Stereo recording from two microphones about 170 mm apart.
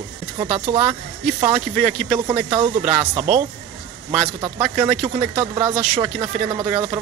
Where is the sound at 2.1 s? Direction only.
30° right (ahead or behind).